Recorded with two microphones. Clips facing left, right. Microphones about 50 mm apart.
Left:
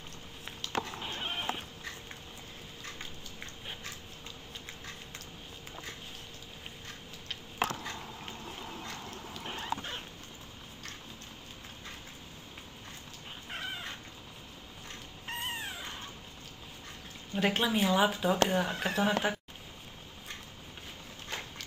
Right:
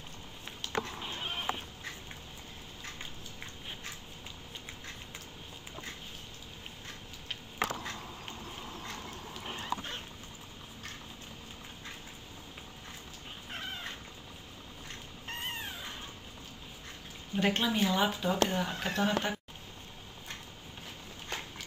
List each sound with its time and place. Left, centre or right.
0.5 s sheep: centre
2.8 s a sound: centre
9.5 s dog: centre
13.5 s cat: centre
15.2 s cat: centre
17.3 s a woman's voice: centre